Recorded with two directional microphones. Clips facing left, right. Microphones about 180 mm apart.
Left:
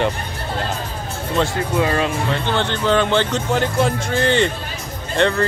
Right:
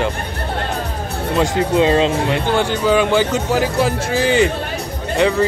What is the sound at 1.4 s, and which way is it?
Speech, 20° right (ahead or behind).